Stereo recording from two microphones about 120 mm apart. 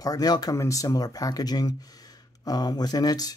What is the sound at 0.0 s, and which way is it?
Speech, 30° left (ahead or behind).